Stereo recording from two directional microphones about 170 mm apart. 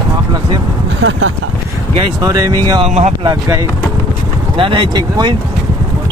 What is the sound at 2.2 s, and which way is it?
Speech, 20° right (ahead or behind).